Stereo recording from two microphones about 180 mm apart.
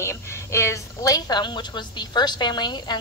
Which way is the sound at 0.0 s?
15° left (ahead or behind).